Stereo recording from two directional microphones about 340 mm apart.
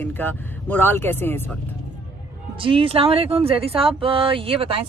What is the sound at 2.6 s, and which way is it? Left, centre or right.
Speech, centre.